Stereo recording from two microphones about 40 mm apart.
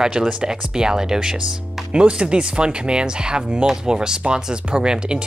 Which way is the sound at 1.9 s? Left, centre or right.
Right.